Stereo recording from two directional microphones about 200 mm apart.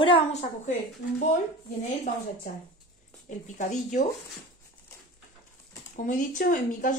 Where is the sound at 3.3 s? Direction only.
35° left (ahead or behind).